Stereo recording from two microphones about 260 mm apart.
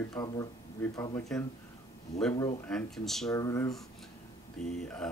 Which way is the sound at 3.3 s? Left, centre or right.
Centre.